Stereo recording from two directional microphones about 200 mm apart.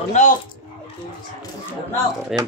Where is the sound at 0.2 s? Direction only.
35° left (ahead or behind).